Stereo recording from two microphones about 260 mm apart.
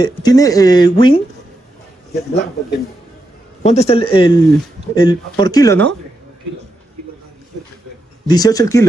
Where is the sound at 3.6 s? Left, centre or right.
Left.